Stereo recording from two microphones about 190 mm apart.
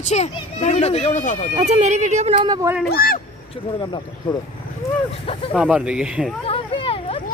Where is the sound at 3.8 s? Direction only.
20° left (ahead or behind).